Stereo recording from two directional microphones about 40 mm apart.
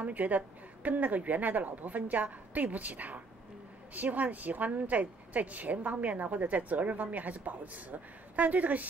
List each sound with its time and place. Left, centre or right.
0.0 s a woman's voice: right